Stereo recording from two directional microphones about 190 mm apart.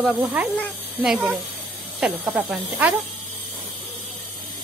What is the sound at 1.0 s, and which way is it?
Speech, 5° right (ahead or behind).